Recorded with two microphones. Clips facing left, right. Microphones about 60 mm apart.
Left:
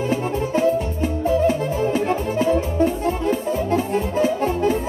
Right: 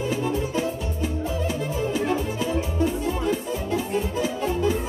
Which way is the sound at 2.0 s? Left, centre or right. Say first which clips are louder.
Left 4 dB; left.